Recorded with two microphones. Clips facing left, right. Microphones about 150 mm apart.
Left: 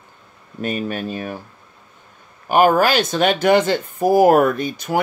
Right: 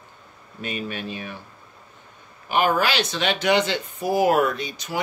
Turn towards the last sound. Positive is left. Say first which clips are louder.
# left 8 dB
turn(degrees=50)  # may be behind; listen again after turning